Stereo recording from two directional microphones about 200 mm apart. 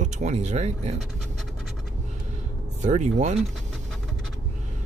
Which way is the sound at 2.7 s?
35° right (ahead or behind).